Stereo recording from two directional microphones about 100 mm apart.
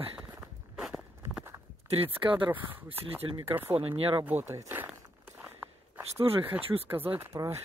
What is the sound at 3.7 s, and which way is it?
Speech, 70° right (ahead or behind).